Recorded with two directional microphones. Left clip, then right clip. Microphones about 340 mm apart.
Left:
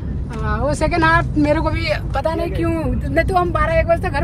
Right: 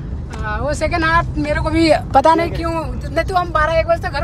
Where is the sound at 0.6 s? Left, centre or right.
Centre.